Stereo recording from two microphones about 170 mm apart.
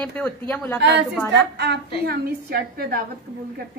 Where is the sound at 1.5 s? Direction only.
75° right (ahead or behind).